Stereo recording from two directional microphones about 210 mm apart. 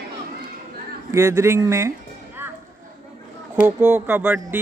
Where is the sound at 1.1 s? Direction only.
15° right (ahead or behind).